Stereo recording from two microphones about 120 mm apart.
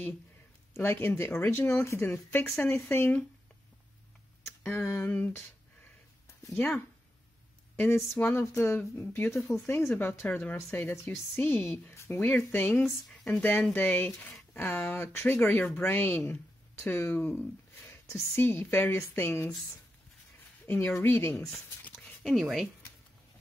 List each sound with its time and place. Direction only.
0.7 s a woman's voice: 20° left (ahead or behind)
4.5 s speech: 20° left (ahead or behind)
6.5 s a woman's voice: 15° left (ahead or behind)
20.6 s a woman's voice: 15° left (ahead or behind)
21.4 s speech: 5° left (ahead or behind)